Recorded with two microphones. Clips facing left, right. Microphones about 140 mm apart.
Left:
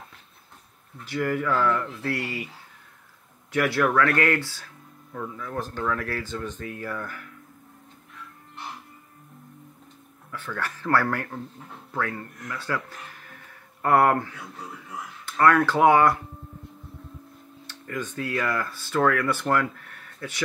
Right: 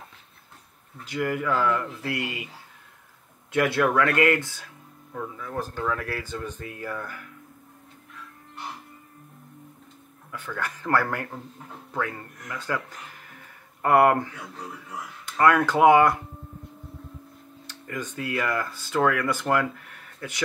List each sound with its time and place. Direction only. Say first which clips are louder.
1.0 s speech: left 1 dB; 15° right (ahead or behind)
2.2 s speech: left 1 dB; 20° right (ahead or behind)
3.5 s speech: even; 20° right (ahead or behind)
10.3 s speech: even; 15° right (ahead or behind)
17.6 s speech: left 1 dB; 15° right (ahead or behind)